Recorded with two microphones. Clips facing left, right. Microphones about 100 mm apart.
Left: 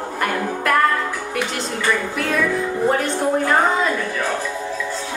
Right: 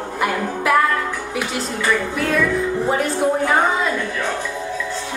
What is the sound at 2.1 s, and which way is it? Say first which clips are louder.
A woman's voice: right 1 dB; centre (ahead or behind).